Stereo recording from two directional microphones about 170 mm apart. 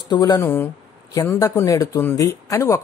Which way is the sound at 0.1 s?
20° left (ahead or behind).